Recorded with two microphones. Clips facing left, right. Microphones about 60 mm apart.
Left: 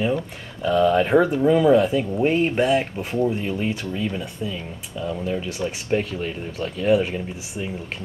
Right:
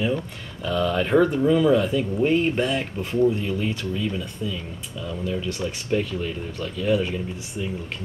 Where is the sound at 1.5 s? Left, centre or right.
Left.